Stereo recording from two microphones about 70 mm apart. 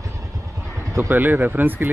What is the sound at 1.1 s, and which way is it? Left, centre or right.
Speech, right.